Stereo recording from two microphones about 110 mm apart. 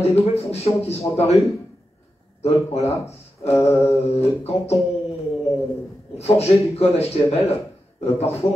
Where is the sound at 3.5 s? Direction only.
25° left (ahead or behind).